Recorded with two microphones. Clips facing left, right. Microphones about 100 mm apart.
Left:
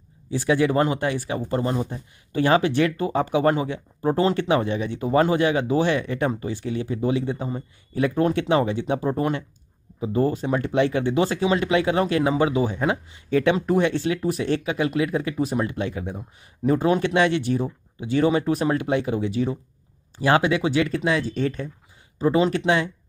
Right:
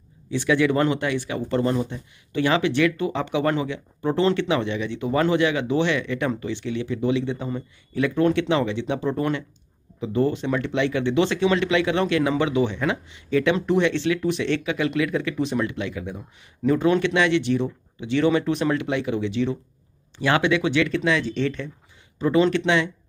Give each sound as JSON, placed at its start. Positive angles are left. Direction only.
{"t": 0.3, "sound": "speech", "side_deg": 35}
{"t": 1.9, "sound": "speech", "side_deg": 40}